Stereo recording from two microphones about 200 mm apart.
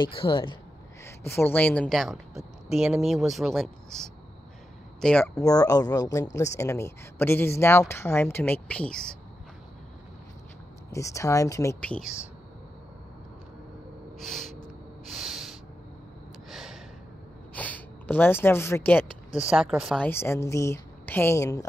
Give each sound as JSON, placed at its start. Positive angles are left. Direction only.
{"t": 0.0, "sound": "a man's voice", "side_deg": 25}
{"t": 1.0, "sound": "a woman's voice", "side_deg": 10}
{"t": 5.4, "sound": "a woman's voice", "side_deg": 15}
{"t": 10.9, "sound": "a woman's voice", "side_deg": 15}
{"t": 14.1, "sound": "a sound", "side_deg": 0}
{"t": 15.0, "sound": "snort", "side_deg": 0}
{"t": 16.4, "sound": "gasp", "side_deg": 0}
{"t": 17.6, "sound": "speech", "side_deg": 10}
{"t": 19.4, "sound": "a woman's voice", "side_deg": -5}
{"t": 20.1, "sound": "a woman's voice", "side_deg": 10}